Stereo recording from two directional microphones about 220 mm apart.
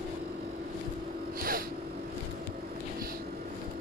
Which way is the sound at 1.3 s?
40° right (ahead or behind).